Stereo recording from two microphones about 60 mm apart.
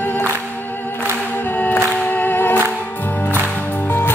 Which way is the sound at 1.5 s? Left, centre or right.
Left.